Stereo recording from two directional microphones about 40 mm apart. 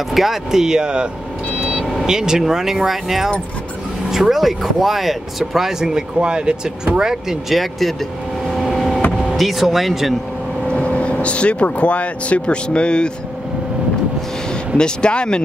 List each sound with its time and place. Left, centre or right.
0.1 s speech: centre
6.1 s speech: right
8.5 s vehicle: centre
9.4 s speech: centre
10.7 s speech: left
14.8 s speech: left